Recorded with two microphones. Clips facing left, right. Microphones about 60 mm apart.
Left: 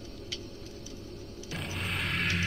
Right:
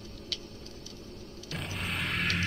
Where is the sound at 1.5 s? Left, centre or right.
Centre.